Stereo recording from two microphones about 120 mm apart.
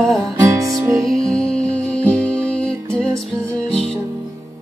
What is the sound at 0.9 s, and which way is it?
Music, 5° left (ahead or behind).